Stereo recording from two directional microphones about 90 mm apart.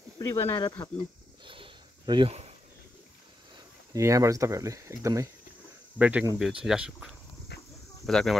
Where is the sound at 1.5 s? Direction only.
70° right (ahead or behind).